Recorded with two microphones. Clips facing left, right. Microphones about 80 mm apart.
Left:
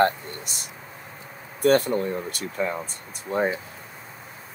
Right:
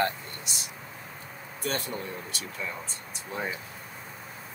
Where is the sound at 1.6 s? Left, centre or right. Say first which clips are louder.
Left 13 dB; left.